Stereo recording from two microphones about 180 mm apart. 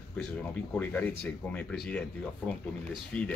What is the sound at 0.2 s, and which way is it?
Speech, 10° left (ahead or behind).